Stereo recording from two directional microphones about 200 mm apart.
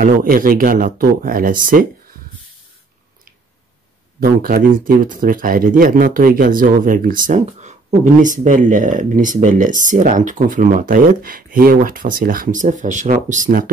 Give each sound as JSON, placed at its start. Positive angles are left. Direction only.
{"t": 0.0, "sound": "speech", "side_deg": -45}
{"t": 4.2, "sound": "speech", "side_deg": -45}